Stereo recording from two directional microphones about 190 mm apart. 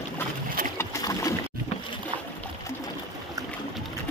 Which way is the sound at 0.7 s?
15° left (ahead or behind).